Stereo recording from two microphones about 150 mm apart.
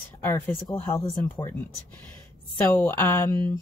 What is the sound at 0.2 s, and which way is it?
Speech, 20° left (ahead or behind).